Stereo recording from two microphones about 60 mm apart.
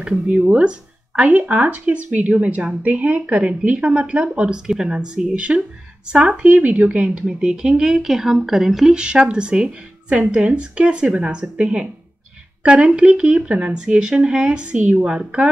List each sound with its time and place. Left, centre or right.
0.0 s speech: right